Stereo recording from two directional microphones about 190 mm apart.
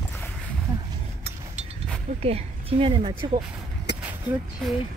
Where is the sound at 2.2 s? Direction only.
30° right (ahead or behind).